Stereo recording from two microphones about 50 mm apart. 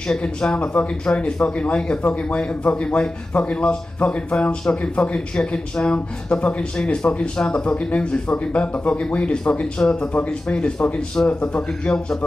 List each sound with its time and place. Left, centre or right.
0.2 s speech: left